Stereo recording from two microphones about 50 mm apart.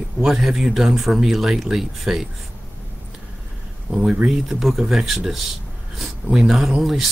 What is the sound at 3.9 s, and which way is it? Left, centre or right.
Speech, centre.